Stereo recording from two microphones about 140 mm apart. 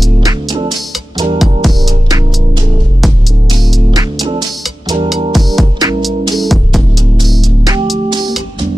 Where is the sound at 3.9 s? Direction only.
30° right (ahead or behind).